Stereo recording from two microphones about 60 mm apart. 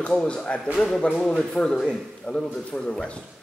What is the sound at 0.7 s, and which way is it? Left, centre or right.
A man's voice, centre.